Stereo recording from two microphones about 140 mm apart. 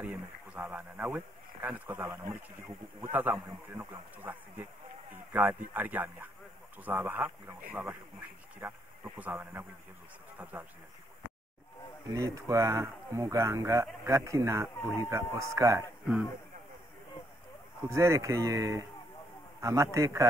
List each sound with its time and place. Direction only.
0.0 s a man's voice: 10° right (ahead or behind)
12.1 s speech: 20° right (ahead or behind)
17.8 s speech: 20° right (ahead or behind)